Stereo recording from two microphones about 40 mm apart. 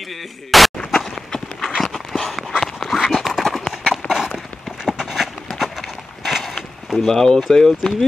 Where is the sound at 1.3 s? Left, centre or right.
Left.